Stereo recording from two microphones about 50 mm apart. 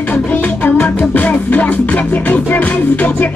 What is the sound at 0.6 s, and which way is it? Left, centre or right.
Music, left.